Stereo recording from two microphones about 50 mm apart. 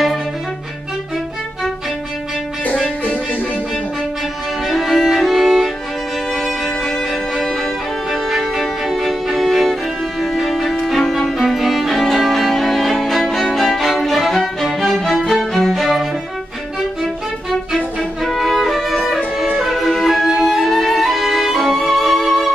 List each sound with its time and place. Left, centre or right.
2.6 s music: left
4.6 s violin: centre
6.3 s music: centre
8.1 s music: centre
10.9 s violin: centre
14.8 s music: centre
18.2 s music: centre
19.1 s music: centre
19.7 s music: centre
20.2 s violin: centre